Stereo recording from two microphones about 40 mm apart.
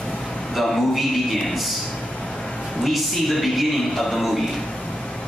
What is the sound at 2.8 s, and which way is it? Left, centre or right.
A man's voice, centre.